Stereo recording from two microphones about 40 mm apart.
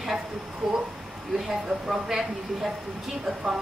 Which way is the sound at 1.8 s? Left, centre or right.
Centre.